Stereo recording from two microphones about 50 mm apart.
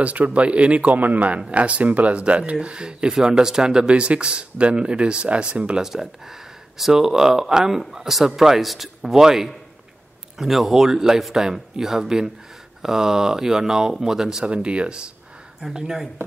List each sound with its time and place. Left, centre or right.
0.0 s speech: right
5.8 s speech: centre
14.4 s speech: right
15.6 s speech: centre